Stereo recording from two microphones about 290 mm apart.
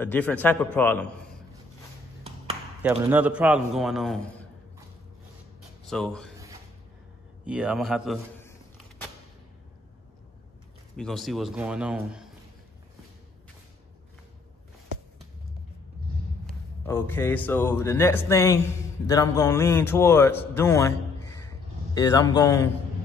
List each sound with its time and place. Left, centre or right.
0.0 s a man's voice: centre
2.8 s a man's voice: centre
5.9 s speech: centre
7.4 s a man's voice: centre
11.0 s a man's voice: centre
16.8 s speech: centre
21.9 s speech: centre